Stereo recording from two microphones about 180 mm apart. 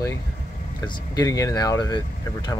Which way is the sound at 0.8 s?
20° left (ahead or behind).